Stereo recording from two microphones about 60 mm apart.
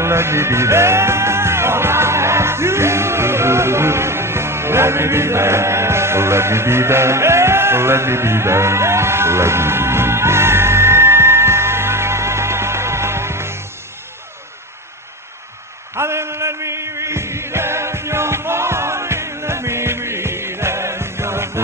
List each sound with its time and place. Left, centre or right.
0.0 s music: right
16.0 s music: right